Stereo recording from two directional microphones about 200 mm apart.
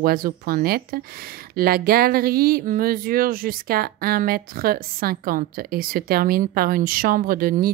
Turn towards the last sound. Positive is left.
turn(degrees=-45)  # may be behind; listen again after turning